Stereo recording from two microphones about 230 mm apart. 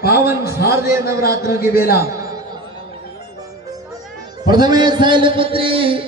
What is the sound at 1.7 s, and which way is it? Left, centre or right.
Speech, left.